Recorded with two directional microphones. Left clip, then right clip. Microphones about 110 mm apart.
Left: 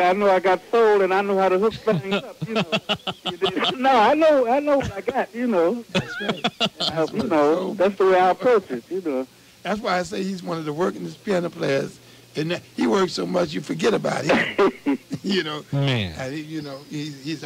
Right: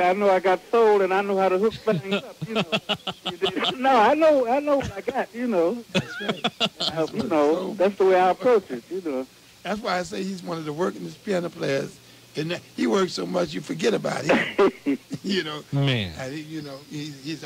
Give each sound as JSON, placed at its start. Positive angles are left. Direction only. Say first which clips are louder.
{"t": 0.0, "sound": "speech", "louder": "left 2 dB", "side_deg": -30}